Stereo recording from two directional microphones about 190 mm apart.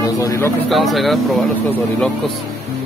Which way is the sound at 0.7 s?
Centre (ahead or behind).